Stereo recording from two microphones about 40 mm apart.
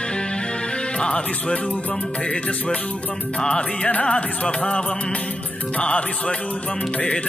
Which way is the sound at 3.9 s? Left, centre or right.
Left.